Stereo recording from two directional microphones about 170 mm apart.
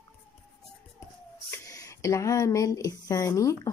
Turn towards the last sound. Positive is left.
turn(degrees=20)  # may be behind; listen again after turning